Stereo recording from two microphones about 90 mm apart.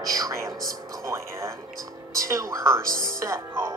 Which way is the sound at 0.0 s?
40° right (ahead or behind).